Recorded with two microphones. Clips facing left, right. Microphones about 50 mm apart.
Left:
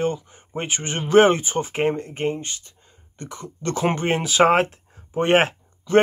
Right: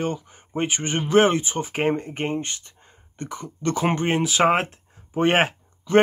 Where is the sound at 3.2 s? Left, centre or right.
Centre.